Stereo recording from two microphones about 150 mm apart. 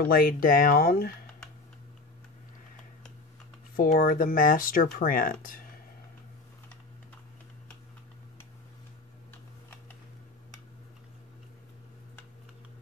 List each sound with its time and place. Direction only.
0.0 s speech: 80° left
3.7 s speech: 75° left (ahead or behind)